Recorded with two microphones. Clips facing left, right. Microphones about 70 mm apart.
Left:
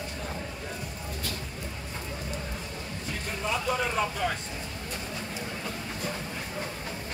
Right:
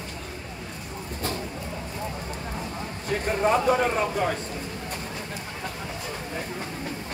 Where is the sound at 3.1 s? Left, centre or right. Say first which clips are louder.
Right 10 dB; right.